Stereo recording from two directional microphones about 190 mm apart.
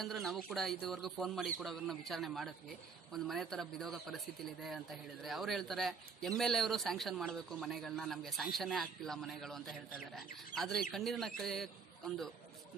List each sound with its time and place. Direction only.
0.0 s a man's voice: centre (ahead or behind)
5.2 s a man's voice: centre (ahead or behind)